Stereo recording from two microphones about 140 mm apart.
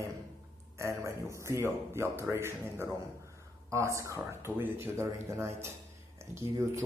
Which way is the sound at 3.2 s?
20° right (ahead or behind).